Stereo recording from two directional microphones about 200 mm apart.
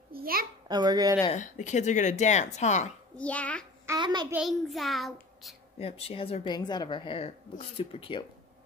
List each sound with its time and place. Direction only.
0.1 s a sound: 50° right (ahead or behind)
0.7 s speech: 20° right (ahead or behind)
1.3 s speech: 35° left (ahead or behind)
3.2 s a child's voice: 5° left (ahead or behind)
3.8 s a child's voice: 20° right (ahead or behind)
4.3 s a child's voice: centre (ahead or behind)
5.8 s speech: 30° left (ahead or behind)